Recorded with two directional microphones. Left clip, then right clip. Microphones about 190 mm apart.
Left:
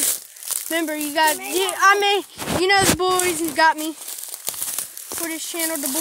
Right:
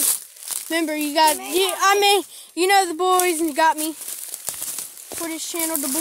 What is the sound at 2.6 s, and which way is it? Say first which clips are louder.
Speech: even; 15° right (ahead or behind).